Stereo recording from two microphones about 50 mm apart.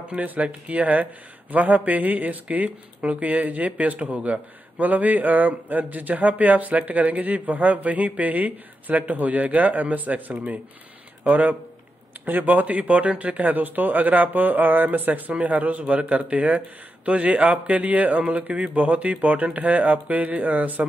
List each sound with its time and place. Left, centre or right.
0.1 s a man's voice: right
12.6 s a man's voice: right